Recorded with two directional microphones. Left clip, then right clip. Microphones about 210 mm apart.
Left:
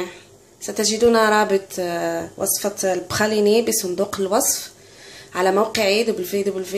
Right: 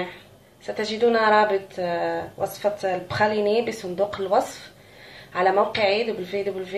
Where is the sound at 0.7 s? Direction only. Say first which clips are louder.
Left 4 dB; 55° left (ahead or behind).